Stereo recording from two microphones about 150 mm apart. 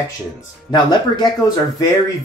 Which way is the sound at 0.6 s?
25° left (ahead or behind).